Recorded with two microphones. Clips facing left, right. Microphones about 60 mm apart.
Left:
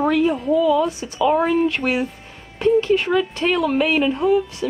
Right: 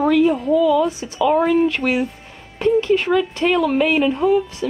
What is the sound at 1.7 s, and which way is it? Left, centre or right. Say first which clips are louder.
Speech: right 2 dB; left.